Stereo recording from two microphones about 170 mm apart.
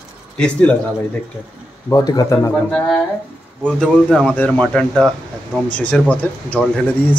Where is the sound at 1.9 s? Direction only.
25° left (ahead or behind).